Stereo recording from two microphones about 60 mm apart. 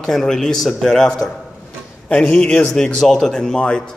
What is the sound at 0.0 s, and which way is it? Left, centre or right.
A man's voice, centre.